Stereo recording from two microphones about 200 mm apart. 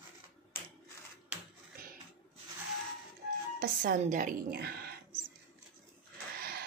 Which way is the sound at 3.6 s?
45° right (ahead or behind).